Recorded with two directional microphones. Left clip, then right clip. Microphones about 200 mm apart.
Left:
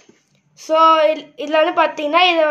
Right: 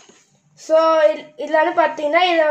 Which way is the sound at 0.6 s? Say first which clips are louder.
Left 1 dB; centre (ahead or behind).